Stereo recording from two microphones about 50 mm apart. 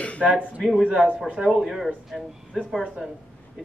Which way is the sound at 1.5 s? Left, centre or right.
Centre.